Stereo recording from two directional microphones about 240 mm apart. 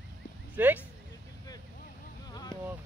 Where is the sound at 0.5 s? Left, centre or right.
Centre.